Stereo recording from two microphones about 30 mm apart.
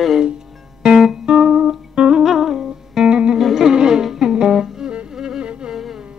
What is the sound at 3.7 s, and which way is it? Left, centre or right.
Music, right.